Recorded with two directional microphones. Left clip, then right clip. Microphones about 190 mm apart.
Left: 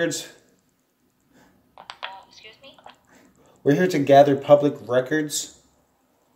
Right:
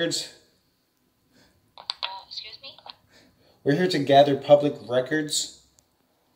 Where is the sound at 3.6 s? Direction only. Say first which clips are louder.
Left 3 dB; 10° left (ahead or behind).